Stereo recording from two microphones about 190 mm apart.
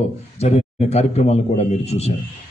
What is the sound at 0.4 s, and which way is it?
A man's voice, 35° left (ahead or behind).